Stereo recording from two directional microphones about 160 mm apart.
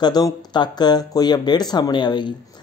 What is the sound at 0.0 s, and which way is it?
Speech, 25° left (ahead or behind).